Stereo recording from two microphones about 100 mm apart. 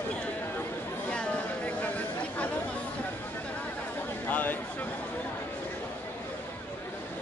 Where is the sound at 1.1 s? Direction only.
10° left (ahead or behind).